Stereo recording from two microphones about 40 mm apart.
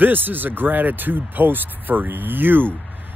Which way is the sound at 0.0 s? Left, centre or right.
Right.